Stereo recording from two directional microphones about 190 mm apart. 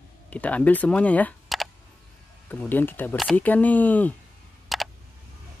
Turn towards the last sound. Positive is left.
turn(degrees=0)  # may be behind; listen again after turning